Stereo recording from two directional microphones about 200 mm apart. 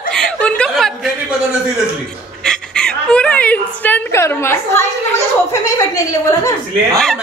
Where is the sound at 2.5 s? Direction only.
5° left (ahead or behind).